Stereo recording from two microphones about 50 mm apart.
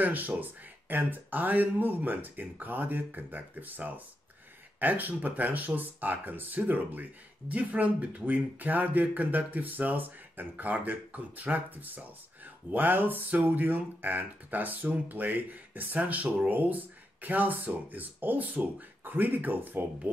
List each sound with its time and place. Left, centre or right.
0.0 s speech: right